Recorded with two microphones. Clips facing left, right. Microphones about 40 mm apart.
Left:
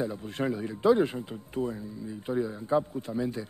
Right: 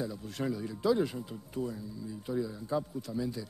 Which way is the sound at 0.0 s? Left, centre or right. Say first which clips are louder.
Left 5 dB; left.